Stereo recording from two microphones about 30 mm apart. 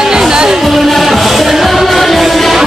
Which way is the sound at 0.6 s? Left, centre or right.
Centre.